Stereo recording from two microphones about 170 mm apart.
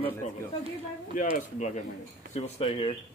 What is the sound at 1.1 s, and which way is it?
Speech, 45° left (ahead or behind).